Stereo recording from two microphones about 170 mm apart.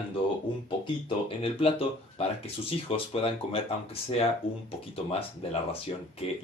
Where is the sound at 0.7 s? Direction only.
30° left (ahead or behind).